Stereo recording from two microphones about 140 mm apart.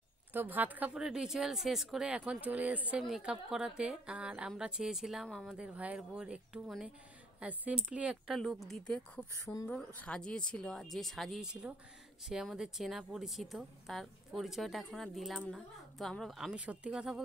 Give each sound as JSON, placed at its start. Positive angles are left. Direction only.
{"t": 0.3, "sound": "a woman's voice", "side_deg": -15}
{"t": 5.5, "sound": "a woman's voice", "side_deg": -10}